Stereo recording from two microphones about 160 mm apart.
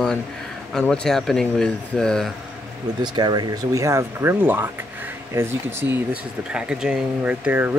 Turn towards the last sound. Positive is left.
turn(degrees=-10)  # may be behind; listen again after turning